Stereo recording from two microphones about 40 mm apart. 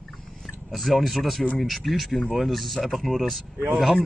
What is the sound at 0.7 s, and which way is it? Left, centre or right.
Speech, centre.